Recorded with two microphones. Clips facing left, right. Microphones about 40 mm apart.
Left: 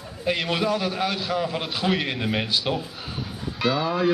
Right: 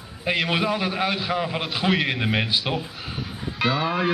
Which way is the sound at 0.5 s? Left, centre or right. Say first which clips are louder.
Right 1 dB; centre.